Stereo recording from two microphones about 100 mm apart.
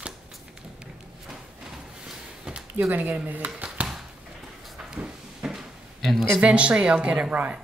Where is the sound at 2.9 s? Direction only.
15° right (ahead or behind).